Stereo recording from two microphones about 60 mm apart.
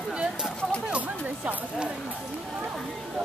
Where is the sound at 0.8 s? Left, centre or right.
Right.